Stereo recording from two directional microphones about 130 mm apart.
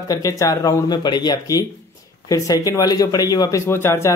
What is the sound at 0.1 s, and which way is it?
Mantra, 25° left (ahead or behind).